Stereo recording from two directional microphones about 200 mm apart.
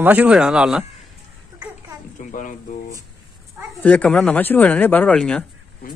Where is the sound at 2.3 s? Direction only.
40° left (ahead or behind).